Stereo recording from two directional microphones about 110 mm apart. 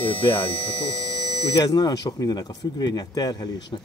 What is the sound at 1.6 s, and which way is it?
Speech, 40° left (ahead or behind).